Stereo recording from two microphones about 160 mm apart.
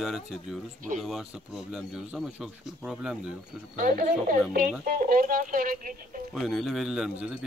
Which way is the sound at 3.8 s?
60° right (ahead or behind).